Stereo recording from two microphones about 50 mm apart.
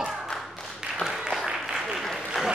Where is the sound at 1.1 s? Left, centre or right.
Centre.